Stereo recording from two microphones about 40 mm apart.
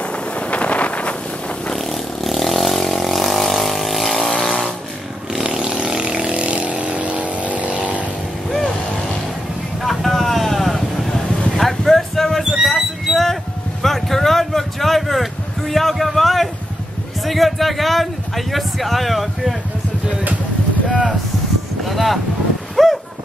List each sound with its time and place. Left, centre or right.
0.0 s wind noise: left
1.8 s vehicle: centre
5.4 s vehicle: right
9.8 s vehicle: centre
12.4 s a sound: centre
20.9 s a sound: centre